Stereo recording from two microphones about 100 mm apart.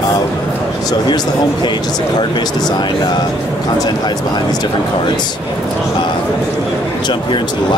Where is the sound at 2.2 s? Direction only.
45° left (ahead or behind).